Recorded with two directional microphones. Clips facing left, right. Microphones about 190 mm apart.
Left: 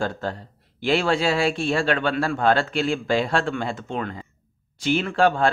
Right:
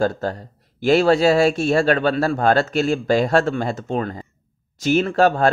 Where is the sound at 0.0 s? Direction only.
40° right (ahead or behind).